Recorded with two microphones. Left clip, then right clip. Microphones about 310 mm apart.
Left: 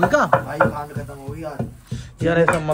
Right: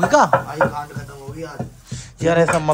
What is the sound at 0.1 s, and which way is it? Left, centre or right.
Speech, centre.